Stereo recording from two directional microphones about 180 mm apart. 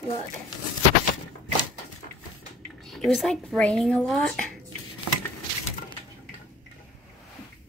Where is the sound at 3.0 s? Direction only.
Centre (ahead or behind).